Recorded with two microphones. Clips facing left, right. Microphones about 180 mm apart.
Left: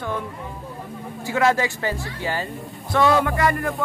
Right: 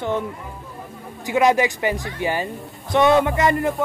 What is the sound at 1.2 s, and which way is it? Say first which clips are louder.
Speech: right 3 dB; 15° right (ahead or behind).